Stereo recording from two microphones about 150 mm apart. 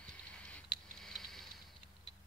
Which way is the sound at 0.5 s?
5° left (ahead or behind).